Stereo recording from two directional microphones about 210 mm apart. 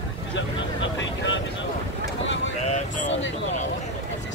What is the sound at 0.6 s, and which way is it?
Vehicle, 60° left (ahead or behind).